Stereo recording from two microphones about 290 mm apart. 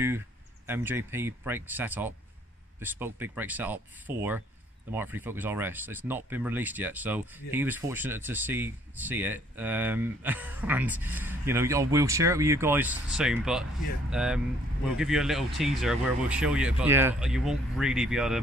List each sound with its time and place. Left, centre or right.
0.7 s speech: centre